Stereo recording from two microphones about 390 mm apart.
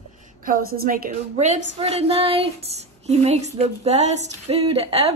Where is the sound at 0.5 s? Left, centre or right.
Right.